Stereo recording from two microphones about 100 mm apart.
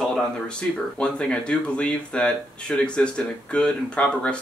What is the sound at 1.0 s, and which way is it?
Speech, 10° left (ahead or behind).